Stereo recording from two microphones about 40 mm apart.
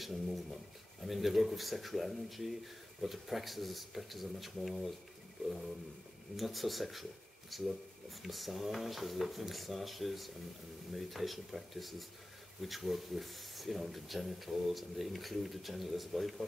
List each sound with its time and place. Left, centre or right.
0.0 s speech: centre
6.3 s speech: centre
8.2 s speech: centre